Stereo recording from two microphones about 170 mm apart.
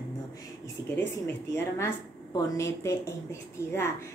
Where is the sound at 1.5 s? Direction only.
15° left (ahead or behind).